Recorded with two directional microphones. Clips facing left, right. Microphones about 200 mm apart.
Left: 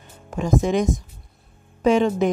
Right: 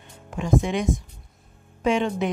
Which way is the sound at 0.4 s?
40° left (ahead or behind).